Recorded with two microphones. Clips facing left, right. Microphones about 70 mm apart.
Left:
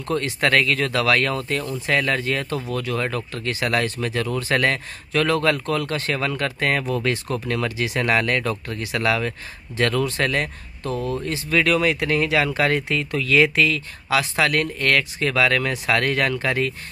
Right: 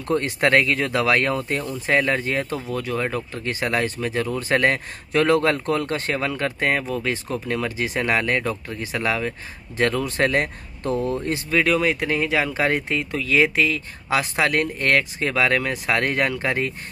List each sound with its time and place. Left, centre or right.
0.1 s speech: right
6.7 s speech: centre
7.4 s speech: centre
10.2 s speech: right
11.5 s speech: centre